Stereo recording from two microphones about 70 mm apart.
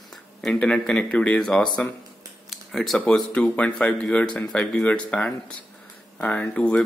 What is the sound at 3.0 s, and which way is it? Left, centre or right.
Speech, centre.